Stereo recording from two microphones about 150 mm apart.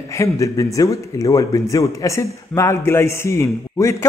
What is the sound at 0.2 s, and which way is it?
A man's voice, 20° left (ahead or behind).